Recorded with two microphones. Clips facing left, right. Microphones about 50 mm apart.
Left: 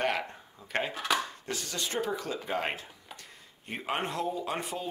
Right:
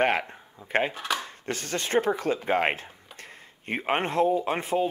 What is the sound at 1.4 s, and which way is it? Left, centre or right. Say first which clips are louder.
Speech: right 5 dB; right.